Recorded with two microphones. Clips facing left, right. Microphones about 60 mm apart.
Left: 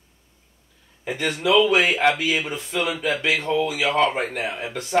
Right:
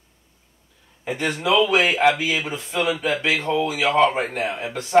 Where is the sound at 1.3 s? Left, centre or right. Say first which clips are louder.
Left 1 dB; centre.